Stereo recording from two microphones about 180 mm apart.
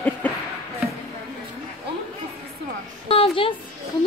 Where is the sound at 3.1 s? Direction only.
30° left (ahead or behind).